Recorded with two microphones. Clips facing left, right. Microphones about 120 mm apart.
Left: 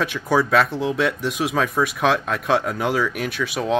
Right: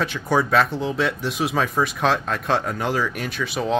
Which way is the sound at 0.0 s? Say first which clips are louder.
Left 1 dB; centre (ahead or behind).